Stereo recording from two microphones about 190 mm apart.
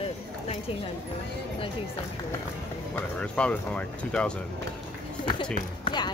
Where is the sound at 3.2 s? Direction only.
5° left (ahead or behind).